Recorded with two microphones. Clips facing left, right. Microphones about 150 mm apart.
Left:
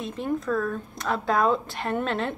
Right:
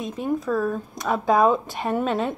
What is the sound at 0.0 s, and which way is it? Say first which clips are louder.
Speech: right 3 dB; 10° right (ahead or behind).